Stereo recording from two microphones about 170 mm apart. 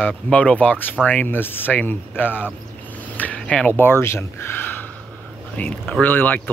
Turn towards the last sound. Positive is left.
turn(degrees=10)  # may be behind; listen again after turning